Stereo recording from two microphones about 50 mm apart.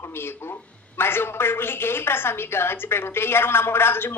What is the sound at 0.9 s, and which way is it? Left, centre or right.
A woman's voice, left.